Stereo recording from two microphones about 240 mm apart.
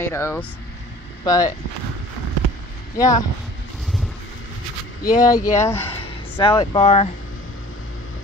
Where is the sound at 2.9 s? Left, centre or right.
Centre.